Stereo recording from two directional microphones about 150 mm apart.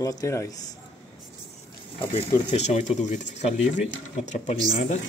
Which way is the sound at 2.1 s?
50° left (ahead or behind).